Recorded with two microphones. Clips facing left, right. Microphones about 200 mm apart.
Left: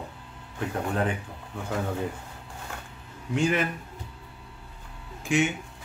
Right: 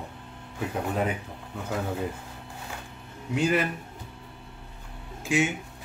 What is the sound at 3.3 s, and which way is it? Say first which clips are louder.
Speech: even; 5° right (ahead or behind).